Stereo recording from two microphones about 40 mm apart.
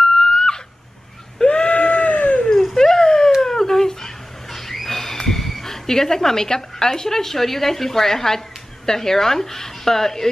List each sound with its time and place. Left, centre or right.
0.2 s screaming: centre
1.4 s goat: left
2.7 s dog: centre
3.3 s a sound: centre
8.8 s speech: centre